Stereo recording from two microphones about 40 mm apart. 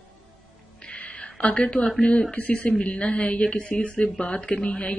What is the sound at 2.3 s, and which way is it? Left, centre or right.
A woman's voice, left.